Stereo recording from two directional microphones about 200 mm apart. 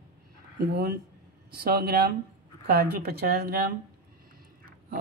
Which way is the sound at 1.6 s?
50° right (ahead or behind).